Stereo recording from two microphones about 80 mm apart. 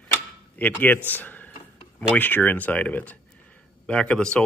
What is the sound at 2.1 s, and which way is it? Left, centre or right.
Speech, left.